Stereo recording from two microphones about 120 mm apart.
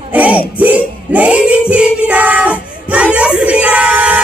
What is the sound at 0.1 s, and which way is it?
Music, 10° right (ahead or behind).